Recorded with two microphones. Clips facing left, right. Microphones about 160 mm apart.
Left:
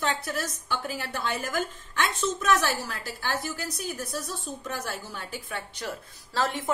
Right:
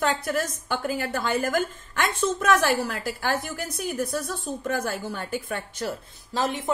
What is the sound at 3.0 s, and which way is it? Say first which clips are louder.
A woman's voice: right 5 dB; 55° right (ahead or behind).